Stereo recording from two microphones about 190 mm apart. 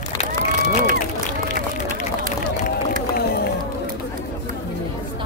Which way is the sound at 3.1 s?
55° left (ahead or behind).